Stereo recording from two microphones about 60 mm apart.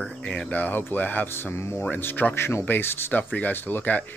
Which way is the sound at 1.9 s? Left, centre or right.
Left.